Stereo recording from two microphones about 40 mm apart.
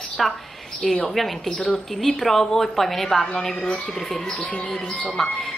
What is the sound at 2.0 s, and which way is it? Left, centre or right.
A woman's voice, centre.